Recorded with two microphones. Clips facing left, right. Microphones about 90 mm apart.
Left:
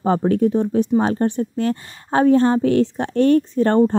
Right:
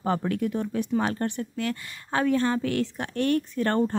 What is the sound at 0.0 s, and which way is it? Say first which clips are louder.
Speech: left 9 dB; 30° left (ahead or behind).